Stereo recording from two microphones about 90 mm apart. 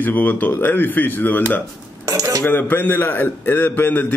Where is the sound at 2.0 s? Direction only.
40° right (ahead or behind).